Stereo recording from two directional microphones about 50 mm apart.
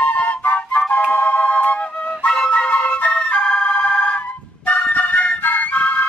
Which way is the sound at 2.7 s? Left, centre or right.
Left.